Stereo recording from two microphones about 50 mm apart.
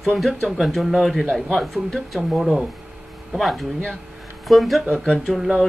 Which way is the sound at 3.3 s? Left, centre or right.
Centre.